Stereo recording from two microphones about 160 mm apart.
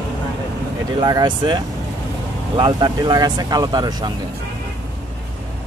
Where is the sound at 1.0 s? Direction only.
25° right (ahead or behind).